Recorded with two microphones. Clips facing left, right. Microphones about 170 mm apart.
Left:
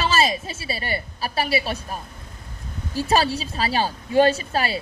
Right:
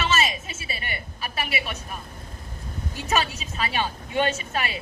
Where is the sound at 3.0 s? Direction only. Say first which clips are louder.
Left 6 dB; 35° left (ahead or behind).